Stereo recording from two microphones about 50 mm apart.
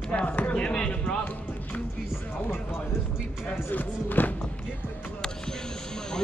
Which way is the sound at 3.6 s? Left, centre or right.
Left.